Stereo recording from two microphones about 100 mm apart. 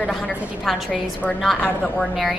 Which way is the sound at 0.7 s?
Centre (ahead or behind).